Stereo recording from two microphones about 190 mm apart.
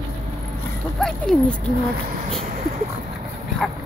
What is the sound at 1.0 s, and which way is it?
Speech, 5° left (ahead or behind).